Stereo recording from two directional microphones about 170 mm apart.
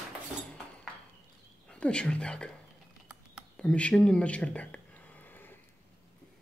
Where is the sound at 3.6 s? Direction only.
5° left (ahead or behind).